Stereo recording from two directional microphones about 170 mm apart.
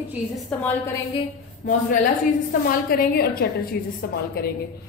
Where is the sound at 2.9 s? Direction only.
60° left (ahead or behind).